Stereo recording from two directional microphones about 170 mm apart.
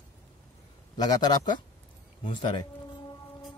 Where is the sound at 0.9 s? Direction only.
25° left (ahead or behind).